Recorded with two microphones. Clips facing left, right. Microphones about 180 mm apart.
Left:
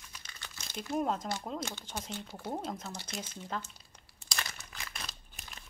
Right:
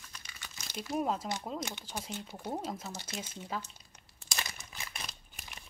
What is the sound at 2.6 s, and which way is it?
Speech, 5° right (ahead or behind).